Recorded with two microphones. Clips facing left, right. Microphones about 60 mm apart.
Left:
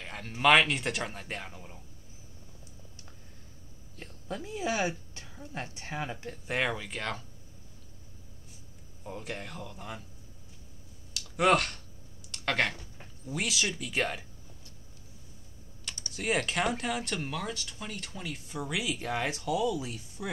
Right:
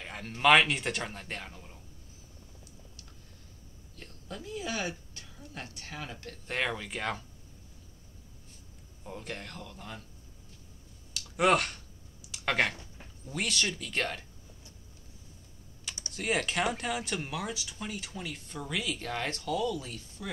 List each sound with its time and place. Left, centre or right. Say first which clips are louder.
0.0 s speech: even; centre
3.9 s a woman's voice: left 5 dB; left; by 7.2 s centre
9.0 s speech: left 2 dB; centre
11.1 s a sound: left 1 dB; centre
12.9 s speech: left 2 dB; centre
16.1 s speech: left 1 dB; centre